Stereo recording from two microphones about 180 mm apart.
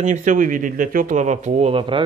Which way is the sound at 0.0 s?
45° right (ahead or behind).